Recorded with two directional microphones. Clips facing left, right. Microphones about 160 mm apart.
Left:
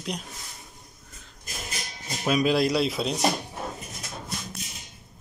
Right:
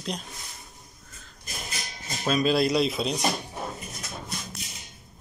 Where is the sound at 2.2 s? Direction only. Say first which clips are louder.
Left 1 dB; 15° left (ahead or behind).